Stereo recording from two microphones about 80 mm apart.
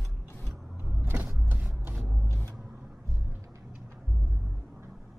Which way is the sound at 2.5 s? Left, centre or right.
Centre.